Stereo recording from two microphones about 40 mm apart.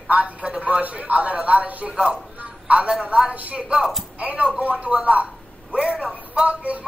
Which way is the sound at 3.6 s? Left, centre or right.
Right.